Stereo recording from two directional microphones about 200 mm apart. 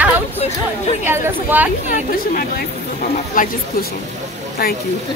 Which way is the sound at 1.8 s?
40° left (ahead or behind).